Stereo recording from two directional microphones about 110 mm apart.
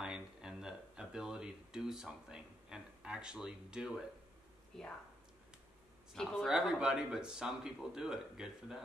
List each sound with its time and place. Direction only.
0.0 s a sound: 5° right (ahead or behind)
4.7 s speech: 5° left (ahead or behind)
6.4 s speech: 5° right (ahead or behind)